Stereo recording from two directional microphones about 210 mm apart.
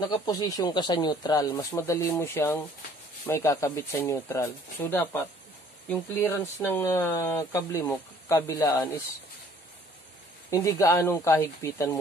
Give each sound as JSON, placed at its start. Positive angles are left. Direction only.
{"t": 0.0, "sound": "speech", "side_deg": 20}
{"t": 10.5, "sound": "speech", "side_deg": 15}